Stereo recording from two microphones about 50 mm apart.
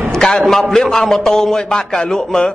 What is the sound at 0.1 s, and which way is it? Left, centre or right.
A man's voice, centre.